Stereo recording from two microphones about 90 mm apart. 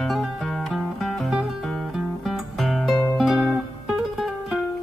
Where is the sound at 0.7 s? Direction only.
Centre (ahead or behind).